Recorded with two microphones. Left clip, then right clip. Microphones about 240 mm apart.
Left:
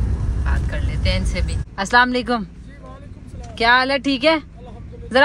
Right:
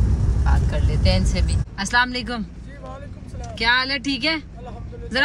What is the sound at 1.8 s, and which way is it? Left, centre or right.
Speech, centre.